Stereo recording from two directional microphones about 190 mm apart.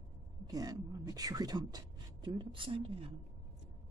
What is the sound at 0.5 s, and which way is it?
Speech, 20° right (ahead or behind).